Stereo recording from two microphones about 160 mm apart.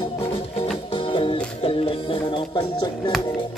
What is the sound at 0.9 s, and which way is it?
Music, 35° left (ahead or behind).